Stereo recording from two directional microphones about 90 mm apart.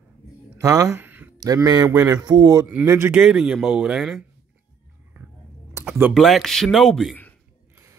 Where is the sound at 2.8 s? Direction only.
30° right (ahead or behind).